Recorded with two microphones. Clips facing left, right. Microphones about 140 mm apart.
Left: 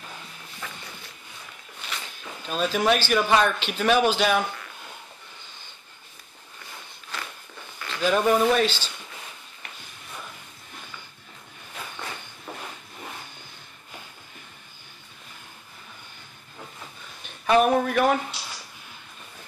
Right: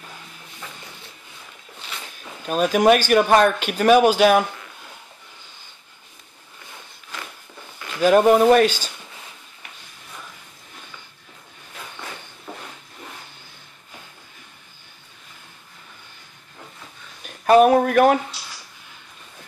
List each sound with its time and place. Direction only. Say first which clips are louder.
2.4 s speech: right 7 dB; 50° right (ahead or behind)
8.0 s speech: right 7 dB; 50° right (ahead or behind)
17.5 s a sound: right 6 dB; 45° right (ahead or behind)